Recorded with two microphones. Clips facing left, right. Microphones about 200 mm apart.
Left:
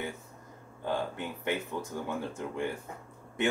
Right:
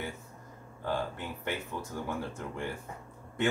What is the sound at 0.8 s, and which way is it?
Speech, 20° left (ahead or behind).